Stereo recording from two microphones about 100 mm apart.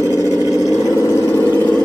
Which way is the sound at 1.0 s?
30° left (ahead or behind).